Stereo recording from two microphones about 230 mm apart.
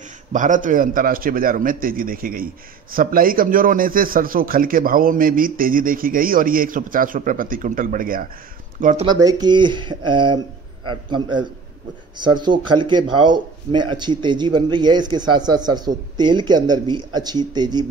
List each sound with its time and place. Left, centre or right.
0.3 s a man's voice: right
9.0 s speech: centre